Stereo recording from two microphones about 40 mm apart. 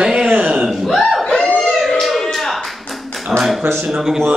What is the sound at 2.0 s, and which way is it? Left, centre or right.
Tap, centre.